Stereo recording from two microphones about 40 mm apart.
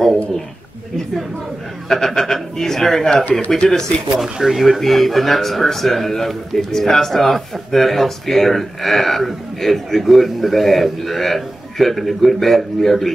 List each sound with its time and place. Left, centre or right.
1.9 s speech: centre
4.2 s speech: centre